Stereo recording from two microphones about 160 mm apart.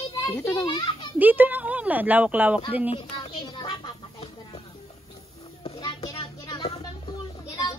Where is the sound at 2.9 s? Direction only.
30° left (ahead or behind).